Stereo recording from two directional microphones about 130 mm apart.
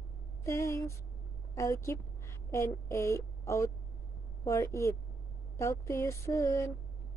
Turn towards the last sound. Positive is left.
turn(degrees=25)  # may be behind; listen again after turning